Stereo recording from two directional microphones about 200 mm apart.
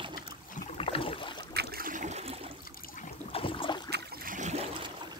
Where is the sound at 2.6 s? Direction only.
45° left (ahead or behind); by 3.9 s 25° left (ahead or behind).